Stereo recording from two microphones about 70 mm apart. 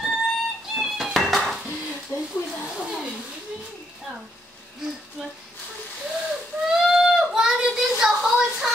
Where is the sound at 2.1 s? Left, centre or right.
Left.